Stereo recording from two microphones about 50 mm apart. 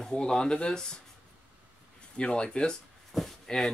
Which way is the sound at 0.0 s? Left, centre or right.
Centre.